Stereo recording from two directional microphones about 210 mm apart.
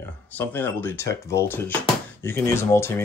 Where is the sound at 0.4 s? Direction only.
10° left (ahead or behind).